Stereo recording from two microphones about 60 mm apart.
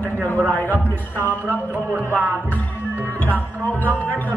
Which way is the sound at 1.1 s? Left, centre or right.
Left.